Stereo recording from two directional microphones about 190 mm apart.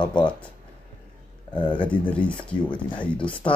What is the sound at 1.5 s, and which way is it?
Speech, 25° left (ahead or behind).